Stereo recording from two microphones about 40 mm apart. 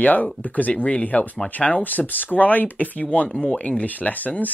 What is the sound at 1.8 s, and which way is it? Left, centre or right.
Speech, left.